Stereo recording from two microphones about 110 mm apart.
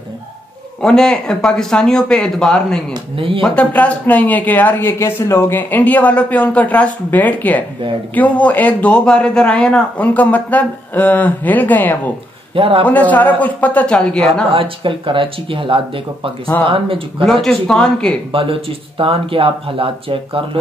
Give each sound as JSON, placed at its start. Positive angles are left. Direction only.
{"t": 0.8, "sound": "speech", "side_deg": 5}
{"t": 3.7, "sound": "a man's voice", "side_deg": 15}
{"t": 12.5, "sound": "speech", "side_deg": -55}
{"t": 12.8, "sound": "a man's voice", "side_deg": 15}
{"t": 14.5, "sound": "speech", "side_deg": -55}
{"t": 17.2, "sound": "speech", "side_deg": 5}
{"t": 18.3, "sound": "speech", "side_deg": -55}